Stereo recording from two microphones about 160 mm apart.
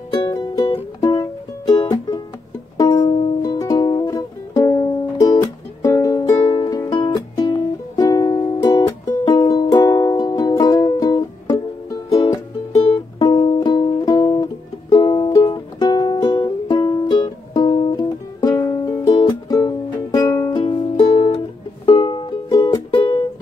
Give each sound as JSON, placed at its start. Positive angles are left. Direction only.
{"t": 0.1, "sound": "music", "side_deg": 25}